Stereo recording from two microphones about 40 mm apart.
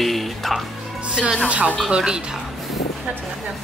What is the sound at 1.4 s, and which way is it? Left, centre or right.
Speech, right.